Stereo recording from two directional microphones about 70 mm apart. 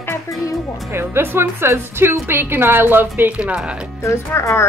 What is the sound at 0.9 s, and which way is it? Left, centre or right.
A woman's voice, right.